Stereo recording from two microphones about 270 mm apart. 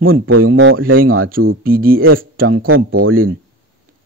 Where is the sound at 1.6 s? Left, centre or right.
Right.